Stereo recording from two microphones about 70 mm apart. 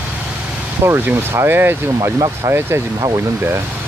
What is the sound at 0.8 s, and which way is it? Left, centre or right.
Speech, right.